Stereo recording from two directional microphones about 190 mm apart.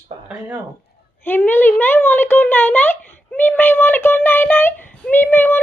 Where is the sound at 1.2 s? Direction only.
10° left (ahead or behind).